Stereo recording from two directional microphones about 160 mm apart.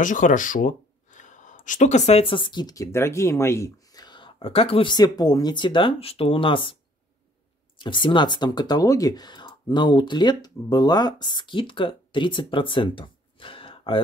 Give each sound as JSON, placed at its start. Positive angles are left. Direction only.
{"t": 0.0, "sound": "speech", "side_deg": 55}